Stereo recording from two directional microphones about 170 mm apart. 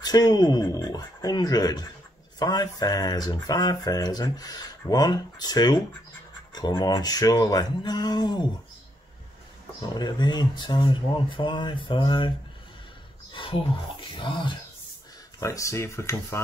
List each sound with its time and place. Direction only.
0.0 s speech: 25° left (ahead or behind)
9.8 s speech: 25° left (ahead or behind)
13.3 s speech: 30° left (ahead or behind)
15.4 s speech: 20° left (ahead or behind)